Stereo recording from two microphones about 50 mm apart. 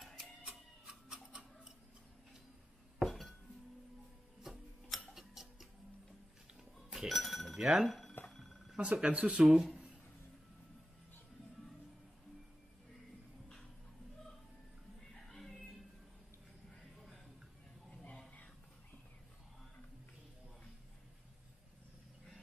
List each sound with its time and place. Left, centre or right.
0.5 s tick-tock: centre
3.0 s glass: centre
4.4 s tick-tock: centre
6.9 s a sound: centre
7.5 s speech: centre
8.3 s a sound: centre
8.7 s speech: right
9.4 s speech: centre
15.1 s music: centre